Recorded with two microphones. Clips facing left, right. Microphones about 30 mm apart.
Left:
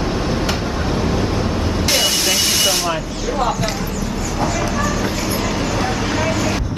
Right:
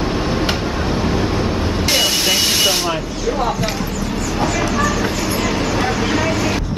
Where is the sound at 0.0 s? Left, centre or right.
Centre.